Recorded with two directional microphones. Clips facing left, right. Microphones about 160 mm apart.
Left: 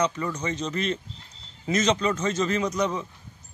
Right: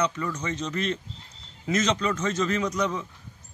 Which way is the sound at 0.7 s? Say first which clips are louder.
Right 1 dB; centre (ahead or behind).